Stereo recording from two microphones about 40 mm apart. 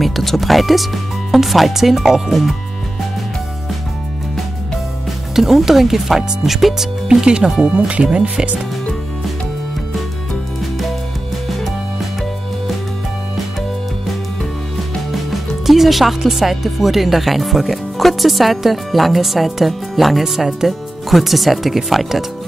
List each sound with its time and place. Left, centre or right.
0.0 s speech: centre
5.3 s speech: centre
7.1 s speech: centre
15.6 s speech: centre